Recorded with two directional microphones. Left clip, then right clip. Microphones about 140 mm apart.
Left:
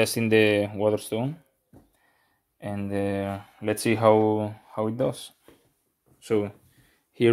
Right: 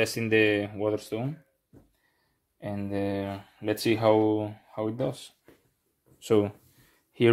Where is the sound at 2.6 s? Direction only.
30° left (ahead or behind); by 5.3 s 50° left (ahead or behind).